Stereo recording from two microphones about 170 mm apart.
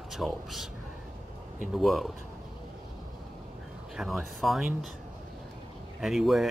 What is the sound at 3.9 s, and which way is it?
Speech, centre (ahead or behind).